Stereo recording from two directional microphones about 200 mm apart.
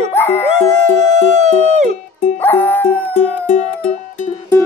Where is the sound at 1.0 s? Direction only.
35° right (ahead or behind).